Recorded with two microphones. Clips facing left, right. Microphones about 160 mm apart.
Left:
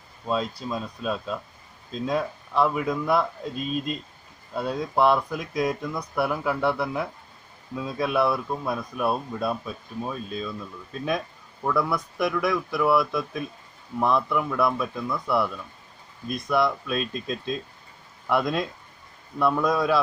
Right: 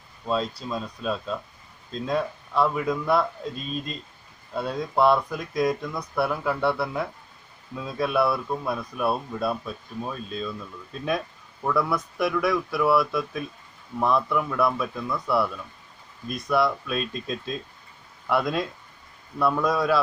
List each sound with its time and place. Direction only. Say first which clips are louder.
0.3 s speech: even; 5° left (ahead or behind)